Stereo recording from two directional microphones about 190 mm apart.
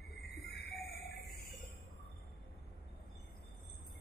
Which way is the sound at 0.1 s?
55° left (ahead or behind).